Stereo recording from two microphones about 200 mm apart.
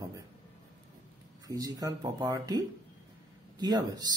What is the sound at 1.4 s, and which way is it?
Speech, 20° right (ahead or behind).